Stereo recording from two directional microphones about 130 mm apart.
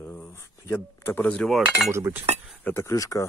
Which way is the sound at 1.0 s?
10° left (ahead or behind).